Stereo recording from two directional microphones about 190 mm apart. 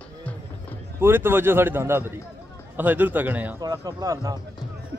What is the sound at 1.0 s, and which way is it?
A man's voice, 10° right (ahead or behind).